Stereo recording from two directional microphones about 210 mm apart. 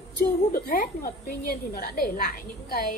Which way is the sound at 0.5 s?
45° left (ahead or behind).